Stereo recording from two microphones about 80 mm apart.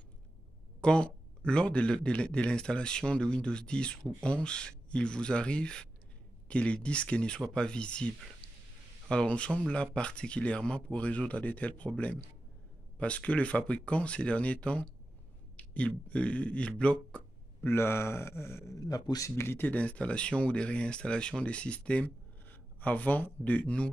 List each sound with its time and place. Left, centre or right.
0.7 s speech: centre
9.1 s speech: centre
15.5 s a sound: centre
16.1 s speech: centre
17.6 s speech: left
18.8 s speech: left
19.3 s speech: left
19.7 s speech: centre